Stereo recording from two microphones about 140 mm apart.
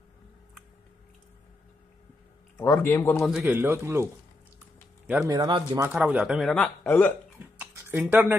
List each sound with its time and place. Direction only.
2.5 s speech: 15° left (ahead or behind)
3.2 s speech: centre (ahead or behind)
3.4 s speech: 15° right (ahead or behind)
5.2 s a man's voice: 30° right (ahead or behind)
5.9 s speech: 10° right (ahead or behind); by 7.2 s 15° left (ahead or behind)
7.5 s a sound: 10° right (ahead or behind)
8.1 s speech: 10° right (ahead or behind)